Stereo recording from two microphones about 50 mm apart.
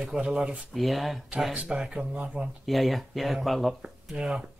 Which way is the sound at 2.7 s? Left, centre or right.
Centre.